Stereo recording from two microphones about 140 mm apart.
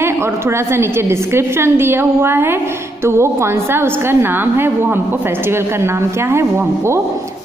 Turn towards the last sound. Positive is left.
turn(degrees=-20)  # may be behind; listen again after turning